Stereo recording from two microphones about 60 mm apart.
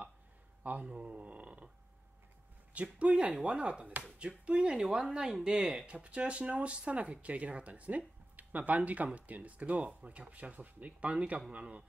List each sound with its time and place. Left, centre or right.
0.7 s speech: right
2.7 s speech: right
5.9 s speech: centre